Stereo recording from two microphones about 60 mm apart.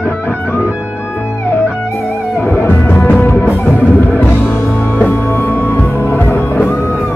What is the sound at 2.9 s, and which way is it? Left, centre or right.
Music, left.